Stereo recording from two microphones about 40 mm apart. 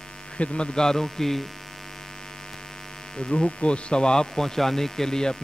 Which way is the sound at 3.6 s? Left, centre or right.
Left.